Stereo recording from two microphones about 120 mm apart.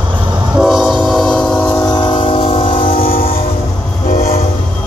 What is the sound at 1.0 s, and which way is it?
Train, 5° left (ahead or behind).